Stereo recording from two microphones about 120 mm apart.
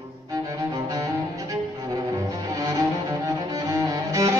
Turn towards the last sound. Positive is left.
turn(degrees=-30)  # may be behind; listen again after turning